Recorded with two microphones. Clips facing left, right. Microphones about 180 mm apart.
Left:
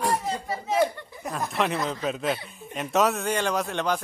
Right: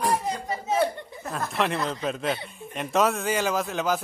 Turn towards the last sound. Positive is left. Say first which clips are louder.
# even
turn(degrees=-5)  # may be behind; listen again after turning